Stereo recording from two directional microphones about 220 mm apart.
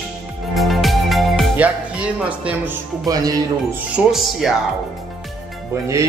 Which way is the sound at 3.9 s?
Centre (ahead or behind).